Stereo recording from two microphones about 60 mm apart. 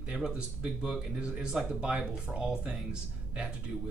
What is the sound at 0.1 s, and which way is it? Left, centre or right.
Speech, centre.